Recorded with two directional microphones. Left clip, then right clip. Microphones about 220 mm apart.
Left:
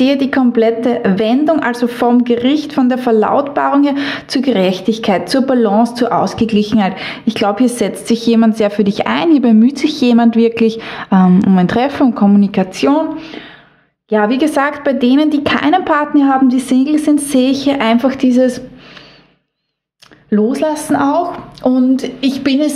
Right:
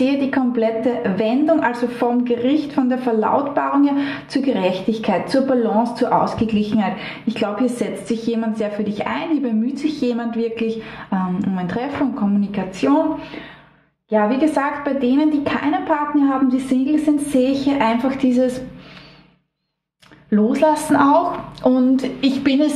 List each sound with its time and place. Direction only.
0.0 s a woman's voice: 45° left (ahead or behind)
20.2 s a woman's voice: 30° left (ahead or behind)